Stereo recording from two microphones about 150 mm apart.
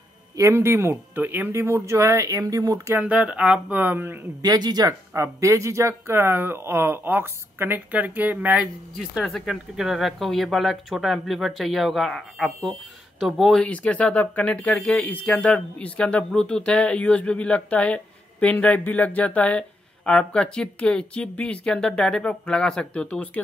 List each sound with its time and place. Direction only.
0.4 s speech: 15° right (ahead or behind)
3.0 s speech: 10° right (ahead or behind)
4.4 s speech: 25° right (ahead or behind); by 23.4 s 10° left (ahead or behind)